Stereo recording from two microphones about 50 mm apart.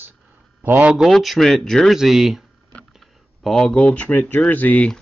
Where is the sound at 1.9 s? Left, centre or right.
Centre.